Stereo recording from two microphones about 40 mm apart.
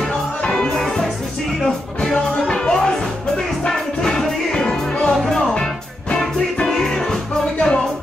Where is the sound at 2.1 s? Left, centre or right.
Centre.